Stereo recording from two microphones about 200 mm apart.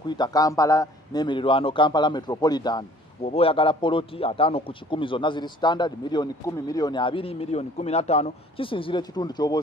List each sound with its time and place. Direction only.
0.1 s a man's voice: 20° left (ahead or behind)